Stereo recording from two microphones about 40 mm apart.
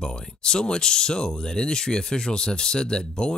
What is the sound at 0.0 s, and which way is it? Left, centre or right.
Speech, centre.